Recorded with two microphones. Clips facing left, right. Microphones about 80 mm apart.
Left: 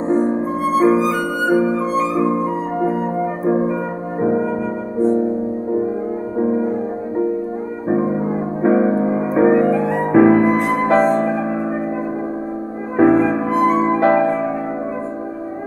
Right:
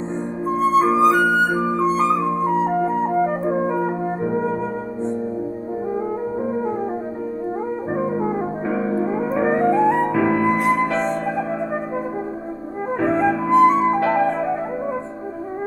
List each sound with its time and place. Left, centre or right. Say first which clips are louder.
0.3 s music: even; left
8.6 s music: left 9 dB; left
9.6 s music: even; right
10.1 s music: left 6 dB; left
12.9 s music: left 6 dB; left